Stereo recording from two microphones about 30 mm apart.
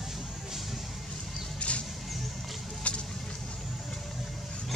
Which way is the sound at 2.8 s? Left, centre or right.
Left.